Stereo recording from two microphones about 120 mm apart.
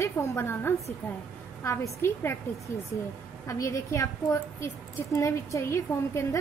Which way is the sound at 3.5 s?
25° left (ahead or behind).